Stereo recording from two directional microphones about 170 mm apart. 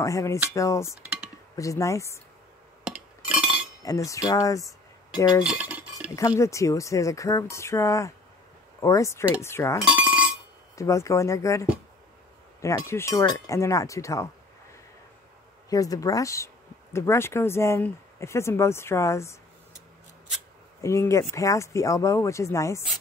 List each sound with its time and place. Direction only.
0.0 s speech: 20° left (ahead or behind)
2.8 s chink: 5° right (ahead or behind)
3.8 s speech: 20° left (ahead or behind)
5.4 s cutlery: 5° right (ahead or behind)
6.1 s speech: 20° left (ahead or behind)
9.8 s chink: 10° right (ahead or behind)
10.8 s speech: 20° left (ahead or behind)
12.6 s speech: 15° left (ahead or behind)
15.7 s speech: 20° left (ahead or behind)
20.8 s speech: 15° left (ahead or behind)